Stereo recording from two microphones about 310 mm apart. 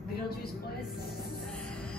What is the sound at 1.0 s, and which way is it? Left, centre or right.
Music, left.